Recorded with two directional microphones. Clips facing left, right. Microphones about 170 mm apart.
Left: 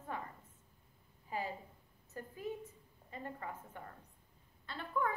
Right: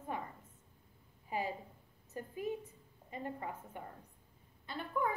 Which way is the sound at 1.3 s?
15° right (ahead or behind).